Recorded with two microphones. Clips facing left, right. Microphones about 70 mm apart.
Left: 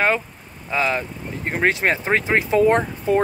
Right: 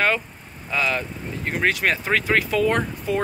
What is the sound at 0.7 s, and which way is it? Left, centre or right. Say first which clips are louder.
Speech: left 2 dB; left.